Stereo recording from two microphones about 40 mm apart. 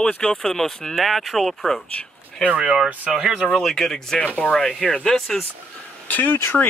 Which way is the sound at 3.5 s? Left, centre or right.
Centre.